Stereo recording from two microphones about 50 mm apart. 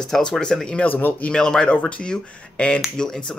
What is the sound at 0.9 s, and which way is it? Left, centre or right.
Speech, left.